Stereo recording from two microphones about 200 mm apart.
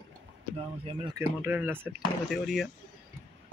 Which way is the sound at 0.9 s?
25° right (ahead or behind).